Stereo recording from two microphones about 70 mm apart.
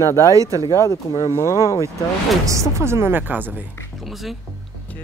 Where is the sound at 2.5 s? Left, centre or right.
Right.